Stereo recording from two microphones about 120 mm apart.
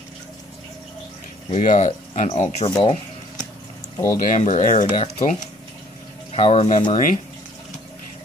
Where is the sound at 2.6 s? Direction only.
60° left (ahead or behind).